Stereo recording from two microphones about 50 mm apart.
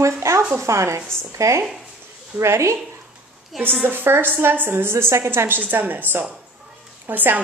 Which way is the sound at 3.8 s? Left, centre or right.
Right.